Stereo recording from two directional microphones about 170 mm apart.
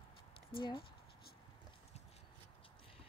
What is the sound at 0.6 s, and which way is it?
Speech, 30° left (ahead or behind).